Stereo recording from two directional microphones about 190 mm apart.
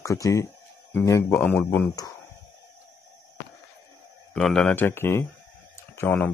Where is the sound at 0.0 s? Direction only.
15° left (ahead or behind).